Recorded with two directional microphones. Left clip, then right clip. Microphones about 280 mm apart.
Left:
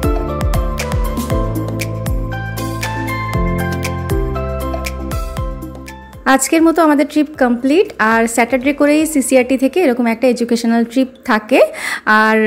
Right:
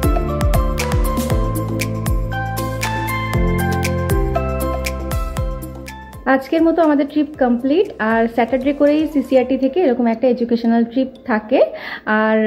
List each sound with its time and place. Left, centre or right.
0.0 s music: centre
6.2 s a woman's voice: left